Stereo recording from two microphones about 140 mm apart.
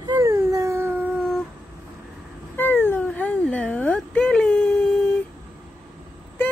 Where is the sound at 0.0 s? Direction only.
25° right (ahead or behind).